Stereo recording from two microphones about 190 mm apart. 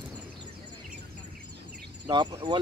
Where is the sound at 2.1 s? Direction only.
25° right (ahead or behind).